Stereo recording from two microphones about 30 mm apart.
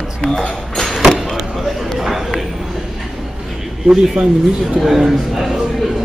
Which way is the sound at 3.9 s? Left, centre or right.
Centre.